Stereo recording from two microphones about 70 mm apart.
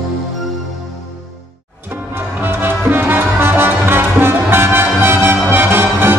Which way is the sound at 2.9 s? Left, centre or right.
Right.